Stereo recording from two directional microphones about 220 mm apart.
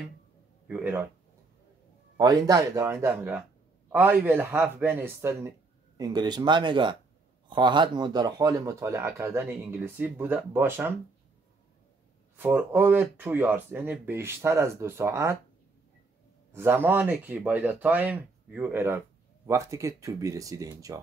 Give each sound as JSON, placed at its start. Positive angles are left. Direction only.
{"t": 0.7, "sound": "speech", "side_deg": -10}
{"t": 2.1, "sound": "speech", "side_deg": -20}
{"t": 12.4, "sound": "speech", "side_deg": -10}
{"t": 16.5, "sound": "speech", "side_deg": -10}